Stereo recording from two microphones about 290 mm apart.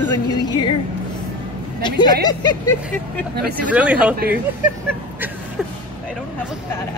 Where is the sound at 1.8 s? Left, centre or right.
Centre.